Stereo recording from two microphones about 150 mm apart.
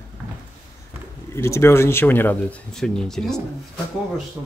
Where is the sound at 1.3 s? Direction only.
15° left (ahead or behind).